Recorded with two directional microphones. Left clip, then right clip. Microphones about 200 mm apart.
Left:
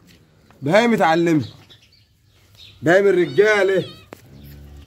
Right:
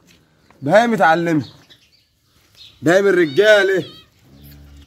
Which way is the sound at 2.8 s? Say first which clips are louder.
Right 1 dB; 35° right (ahead or behind).